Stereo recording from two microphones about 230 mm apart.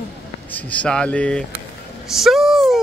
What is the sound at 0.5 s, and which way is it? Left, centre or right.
Speech, centre.